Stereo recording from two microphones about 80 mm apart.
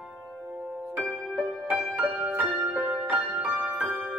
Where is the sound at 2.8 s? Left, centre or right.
Centre.